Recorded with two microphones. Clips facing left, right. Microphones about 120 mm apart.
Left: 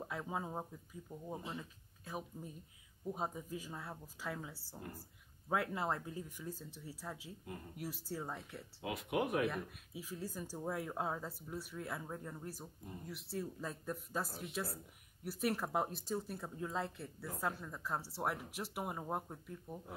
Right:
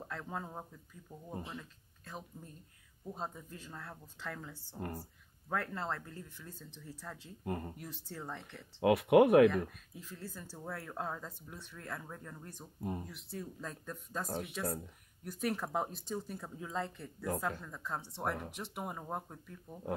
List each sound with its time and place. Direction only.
0.0 s speech: 10° left (ahead or behind)
4.7 s speech: 65° right (ahead or behind)
5.5 s speech: 10° left (ahead or behind)
7.4 s speech: 60° right (ahead or behind)
7.7 s speech: 10° left (ahead or behind)
8.8 s speech: 65° right (ahead or behind)
9.7 s speech: 10° left (ahead or behind)